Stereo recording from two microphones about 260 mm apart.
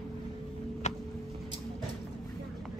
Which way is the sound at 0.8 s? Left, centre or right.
Left.